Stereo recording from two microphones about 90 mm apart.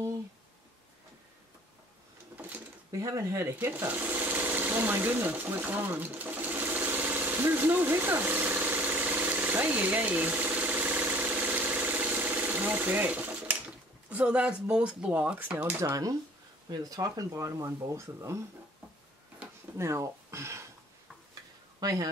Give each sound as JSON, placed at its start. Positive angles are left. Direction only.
{"t": 2.9, "sound": "sewing machine", "side_deg": -35}
{"t": 14.1, "sound": "speech", "side_deg": -10}
{"t": 15.8, "sound": "speech", "side_deg": -35}
{"t": 19.8, "sound": "speech", "side_deg": -35}
{"t": 21.7, "sound": "speech", "side_deg": -40}